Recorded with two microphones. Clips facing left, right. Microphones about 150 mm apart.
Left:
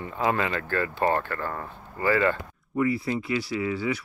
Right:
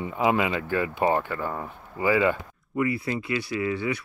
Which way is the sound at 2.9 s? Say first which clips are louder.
Left 1 dB; 20° right (ahead or behind).